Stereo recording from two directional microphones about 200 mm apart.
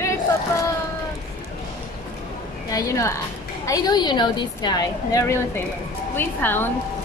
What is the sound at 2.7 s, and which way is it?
A woman's voice, 15° left (ahead or behind).